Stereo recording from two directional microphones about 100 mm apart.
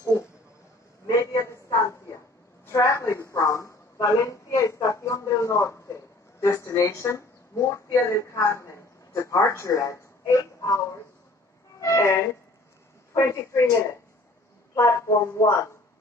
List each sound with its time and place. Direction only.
1.2 s a sound: 30° left (ahead or behind)
6.4 s speech: 30° left (ahead or behind)
11.8 s music: 30° left (ahead or behind)
13.1 s speech: 30° left (ahead or behind)